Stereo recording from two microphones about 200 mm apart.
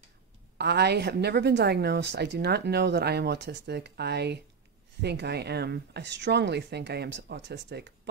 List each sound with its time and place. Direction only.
0.6 s a woman's voice: 55° right (ahead or behind)